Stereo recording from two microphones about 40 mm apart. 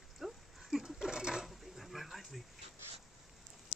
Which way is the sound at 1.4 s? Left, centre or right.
Centre.